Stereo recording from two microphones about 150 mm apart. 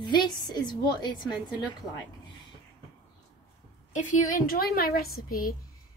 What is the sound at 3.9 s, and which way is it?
A woman's voice, 60° left (ahead or behind).